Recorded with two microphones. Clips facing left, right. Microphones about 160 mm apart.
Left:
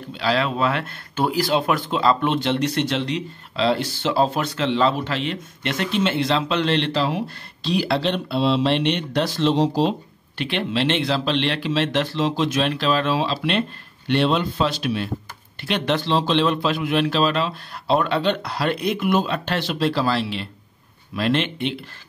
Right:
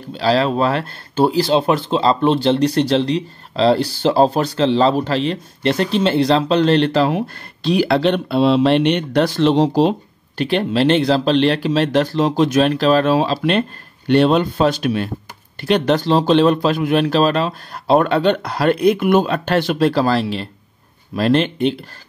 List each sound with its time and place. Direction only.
0.1 s speech: 35° right (ahead or behind); by 9.9 s 60° right (ahead or behind)
10.3 s speech: 40° right (ahead or behind)